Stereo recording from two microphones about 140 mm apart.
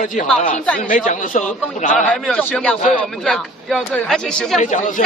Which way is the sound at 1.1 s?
60° left (ahead or behind).